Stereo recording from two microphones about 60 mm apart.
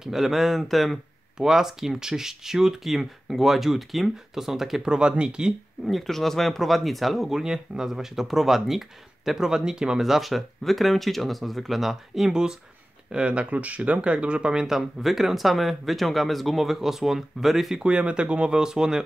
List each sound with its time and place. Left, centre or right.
0.0 s speech: centre
5.9 s speech: centre
17.8 s speech: centre